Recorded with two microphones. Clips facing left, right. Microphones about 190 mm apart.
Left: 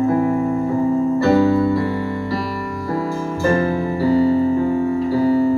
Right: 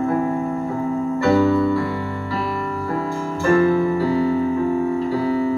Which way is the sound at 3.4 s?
35° left (ahead or behind).